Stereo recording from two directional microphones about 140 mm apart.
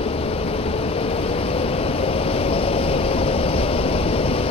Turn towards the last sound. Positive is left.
turn(degrees=45)  # may be behind; listen again after turning